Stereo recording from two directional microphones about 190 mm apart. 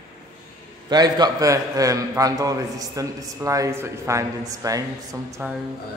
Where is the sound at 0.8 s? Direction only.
20° right (ahead or behind).